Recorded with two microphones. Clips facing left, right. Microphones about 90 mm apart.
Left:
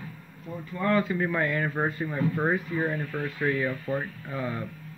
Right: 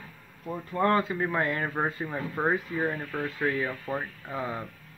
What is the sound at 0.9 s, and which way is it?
Speech, 25° right (ahead or behind).